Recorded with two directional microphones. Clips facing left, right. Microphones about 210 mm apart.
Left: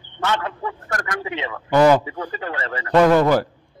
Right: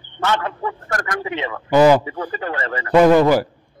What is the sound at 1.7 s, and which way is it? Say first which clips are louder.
Speech: right 2 dB; 5° right (ahead or behind).